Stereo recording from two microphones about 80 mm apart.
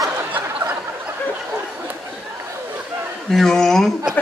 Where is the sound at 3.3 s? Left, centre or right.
Centre.